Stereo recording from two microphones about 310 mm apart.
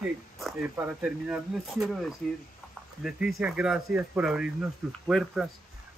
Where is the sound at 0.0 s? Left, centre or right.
Centre.